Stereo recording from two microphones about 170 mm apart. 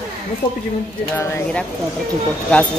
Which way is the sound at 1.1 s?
15° left (ahead or behind).